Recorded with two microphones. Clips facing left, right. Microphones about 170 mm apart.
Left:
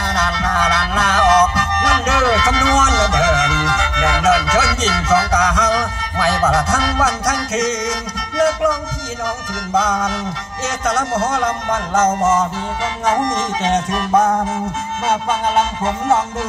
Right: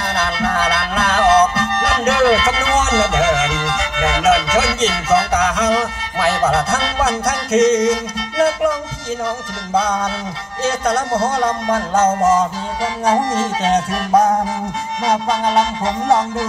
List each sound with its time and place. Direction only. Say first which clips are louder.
0.1 s music: right 1 dB; 30° right (ahead or behind)
9.8 s music: even; 30° right (ahead or behind)